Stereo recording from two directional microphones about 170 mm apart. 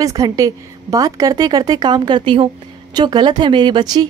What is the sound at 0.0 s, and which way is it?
A woman's voice, 20° right (ahead or behind).